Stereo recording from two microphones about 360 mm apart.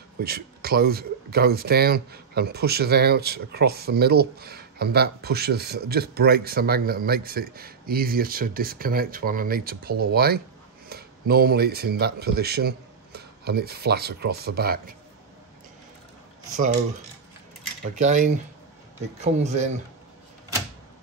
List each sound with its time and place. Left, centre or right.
0.2 s speech: right
17.9 s speech: right
19.4 s speech: centre